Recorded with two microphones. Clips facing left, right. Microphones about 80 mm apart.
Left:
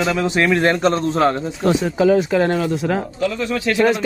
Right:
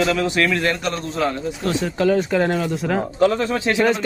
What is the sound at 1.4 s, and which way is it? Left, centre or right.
Speech, left.